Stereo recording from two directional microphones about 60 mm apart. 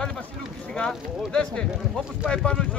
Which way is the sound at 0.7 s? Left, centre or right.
Centre.